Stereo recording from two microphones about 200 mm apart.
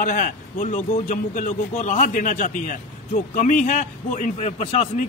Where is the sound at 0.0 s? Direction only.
40° left (ahead or behind).